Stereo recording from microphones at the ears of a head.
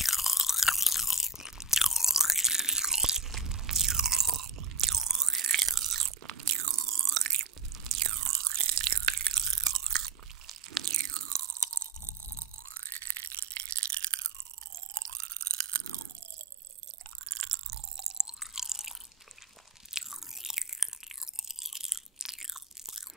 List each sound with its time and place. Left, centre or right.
0.5 s chewing: centre
3.4 s chewing: right
12.7 s a sound: right
15.0 s chewing: right
17.3 s drip: right
18.2 s chewing: centre
21.6 s crunch: centre